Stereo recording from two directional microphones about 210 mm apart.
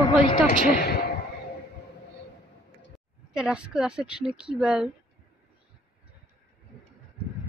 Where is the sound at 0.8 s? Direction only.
55° left (ahead or behind).